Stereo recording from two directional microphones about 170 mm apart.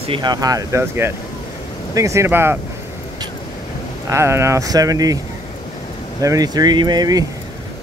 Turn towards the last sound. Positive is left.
turn(degrees=-25)  # may be behind; listen again after turning